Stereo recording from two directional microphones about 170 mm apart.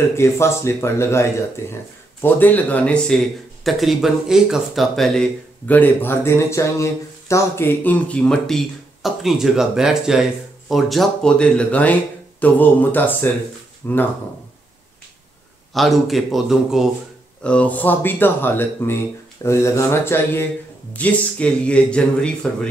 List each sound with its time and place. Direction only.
0.1 s speech: 15° left (ahead or behind)
15.7 s speech: centre (ahead or behind)